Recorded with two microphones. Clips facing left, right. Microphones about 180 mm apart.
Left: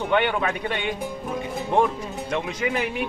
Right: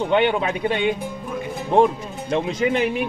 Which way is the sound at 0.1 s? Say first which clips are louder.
Right 2 dB; 20° right (ahead or behind).